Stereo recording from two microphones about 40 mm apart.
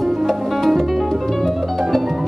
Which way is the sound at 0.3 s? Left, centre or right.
Centre.